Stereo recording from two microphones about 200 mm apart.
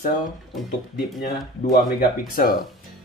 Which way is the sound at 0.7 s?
50° left (ahead or behind).